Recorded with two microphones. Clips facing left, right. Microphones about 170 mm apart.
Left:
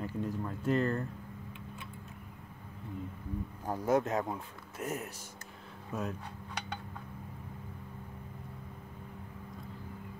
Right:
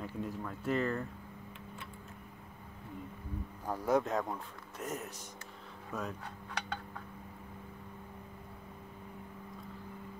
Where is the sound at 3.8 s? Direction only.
Centre (ahead or behind).